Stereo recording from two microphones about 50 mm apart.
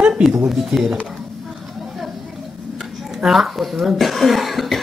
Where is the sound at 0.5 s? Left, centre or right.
Centre.